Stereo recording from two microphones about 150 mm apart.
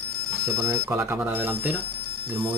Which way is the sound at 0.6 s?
15° right (ahead or behind).